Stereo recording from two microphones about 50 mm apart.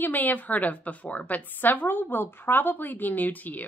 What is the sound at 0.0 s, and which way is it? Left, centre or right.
A woman's voice, left.